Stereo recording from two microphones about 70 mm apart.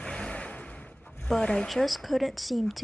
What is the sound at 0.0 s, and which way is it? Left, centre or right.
Vehicle, centre.